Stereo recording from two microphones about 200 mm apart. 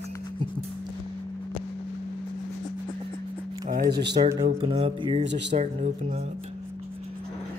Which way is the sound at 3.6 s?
45° right (ahead or behind).